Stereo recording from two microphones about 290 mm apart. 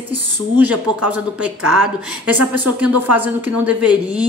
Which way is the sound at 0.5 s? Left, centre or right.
Centre.